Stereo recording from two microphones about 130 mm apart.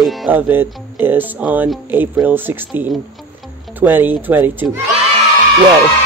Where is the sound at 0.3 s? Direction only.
15° right (ahead or behind).